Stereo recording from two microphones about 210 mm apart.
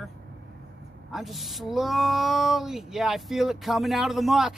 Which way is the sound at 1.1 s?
Centre (ahead or behind).